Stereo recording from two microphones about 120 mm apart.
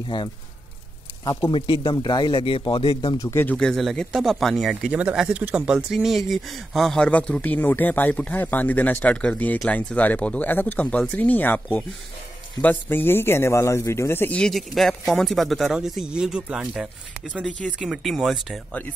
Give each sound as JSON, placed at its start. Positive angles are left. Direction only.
{"t": 0.1, "sound": "speech", "side_deg": 45}
{"t": 1.9, "sound": "speech", "side_deg": 40}
{"t": 3.2, "sound": "a man's voice", "side_deg": 20}
{"t": 3.5, "sound": "a man's voice", "side_deg": 5}
{"t": 14.4, "sound": "speech", "side_deg": 0}